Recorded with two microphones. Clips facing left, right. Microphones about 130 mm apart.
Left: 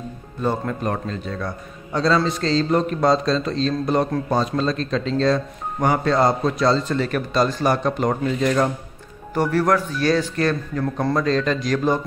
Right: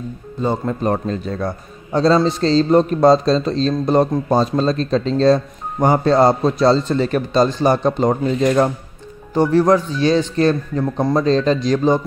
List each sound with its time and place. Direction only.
0.4 s speech: 20° right (ahead or behind)
0.8 s speech: 35° right (ahead or behind)
9.3 s speech: 20° right (ahead or behind)
11.1 s speech: 25° right (ahead or behind)